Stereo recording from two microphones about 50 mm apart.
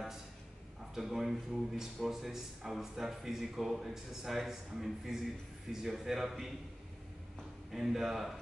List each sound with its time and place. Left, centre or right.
0.9 s a man's voice: centre
7.7 s a man's voice: centre